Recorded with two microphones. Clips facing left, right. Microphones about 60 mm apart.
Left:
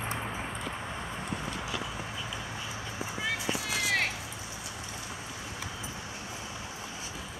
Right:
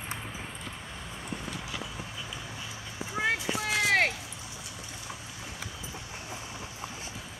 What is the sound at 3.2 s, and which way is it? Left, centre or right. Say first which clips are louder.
Vehicle: right 4 dB; right.